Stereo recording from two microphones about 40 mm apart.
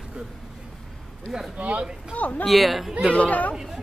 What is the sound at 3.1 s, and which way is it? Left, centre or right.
Speech, left.